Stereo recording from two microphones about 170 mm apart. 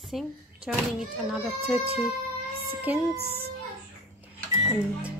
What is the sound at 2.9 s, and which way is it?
Speech, 10° right (ahead or behind).